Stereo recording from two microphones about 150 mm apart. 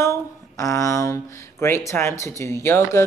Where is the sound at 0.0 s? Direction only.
20° left (ahead or behind).